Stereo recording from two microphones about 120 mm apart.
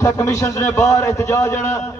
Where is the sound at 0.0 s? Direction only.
25° left (ahead or behind).